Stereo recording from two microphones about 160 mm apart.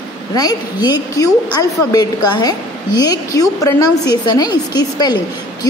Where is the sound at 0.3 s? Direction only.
25° left (ahead or behind).